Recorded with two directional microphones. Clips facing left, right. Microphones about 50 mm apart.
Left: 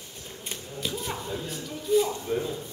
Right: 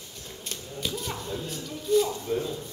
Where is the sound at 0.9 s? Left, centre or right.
Centre.